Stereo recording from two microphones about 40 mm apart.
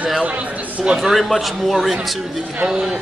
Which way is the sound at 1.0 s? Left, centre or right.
Centre.